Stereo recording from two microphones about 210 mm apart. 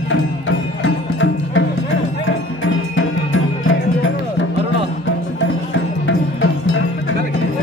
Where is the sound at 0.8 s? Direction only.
65° left (ahead or behind).